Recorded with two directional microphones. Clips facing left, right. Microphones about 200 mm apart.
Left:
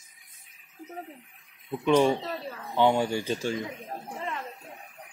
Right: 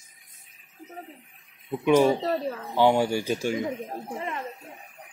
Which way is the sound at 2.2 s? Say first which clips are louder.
Right 8 dB; 40° right (ahead or behind).